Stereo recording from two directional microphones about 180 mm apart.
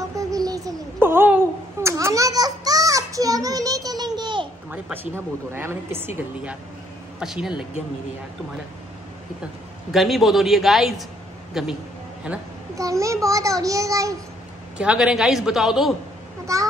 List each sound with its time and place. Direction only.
0.1 s a sound: 20° right (ahead or behind)
4.6 s a sound: 10° right (ahead or behind)
5.1 s a man's voice: 15° right (ahead or behind)
9.8 s a man's voice: centre (ahead or behind); by 14.1 s 20° right (ahead or behind)
14.8 s a man's voice: 5° right (ahead or behind)
16.5 s speech: 20° right (ahead or behind)